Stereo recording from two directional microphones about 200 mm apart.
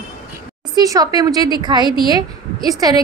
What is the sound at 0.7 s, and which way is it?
A woman's voice, 20° right (ahead or behind).